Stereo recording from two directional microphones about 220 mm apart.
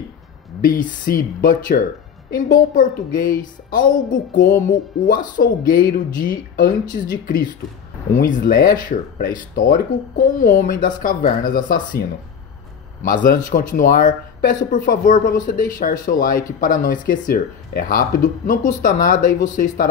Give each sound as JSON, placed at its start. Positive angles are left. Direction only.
{"t": 0.6, "sound": "a woman's voice", "side_deg": 40}
{"t": 8.4, "sound": "a woman's voice", "side_deg": 45}